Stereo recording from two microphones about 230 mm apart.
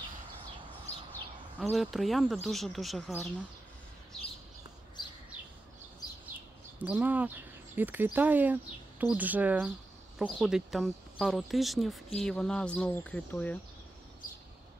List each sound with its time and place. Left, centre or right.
1.6 s speech: centre
6.8 s speech: centre
14.2 s a sound: left